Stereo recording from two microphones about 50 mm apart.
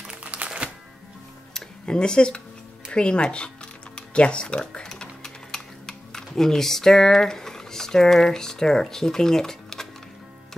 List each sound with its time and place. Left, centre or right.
0.2 s music: right
1.5 s tick-tock: centre
2.9 s music: left